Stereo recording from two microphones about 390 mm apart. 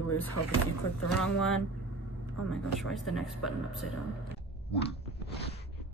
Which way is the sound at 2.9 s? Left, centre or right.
Centre.